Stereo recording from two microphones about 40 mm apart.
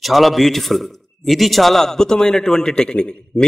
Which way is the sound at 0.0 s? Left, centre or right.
Centre.